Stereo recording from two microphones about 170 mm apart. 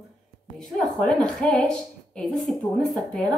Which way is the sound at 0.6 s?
5° left (ahead or behind).